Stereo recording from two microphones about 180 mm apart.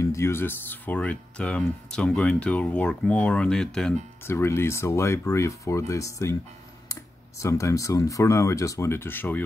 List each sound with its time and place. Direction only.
0.0 s speech: 15° left (ahead or behind)